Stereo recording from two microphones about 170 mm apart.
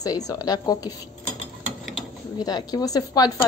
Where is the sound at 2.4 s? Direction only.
25° left (ahead or behind).